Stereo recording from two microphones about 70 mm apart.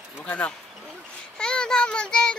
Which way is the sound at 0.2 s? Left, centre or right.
Centre.